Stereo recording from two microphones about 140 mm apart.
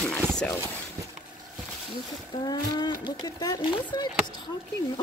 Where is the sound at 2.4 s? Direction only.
30° left (ahead or behind).